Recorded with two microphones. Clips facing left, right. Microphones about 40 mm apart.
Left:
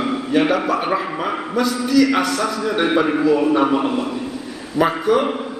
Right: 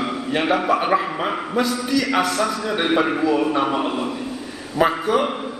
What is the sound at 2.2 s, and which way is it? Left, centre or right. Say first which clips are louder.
Speech: left 1 dB; right.